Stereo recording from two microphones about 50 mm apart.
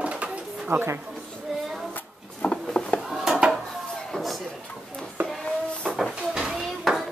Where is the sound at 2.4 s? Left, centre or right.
Centre.